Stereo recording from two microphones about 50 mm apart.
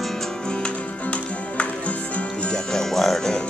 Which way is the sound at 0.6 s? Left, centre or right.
Left.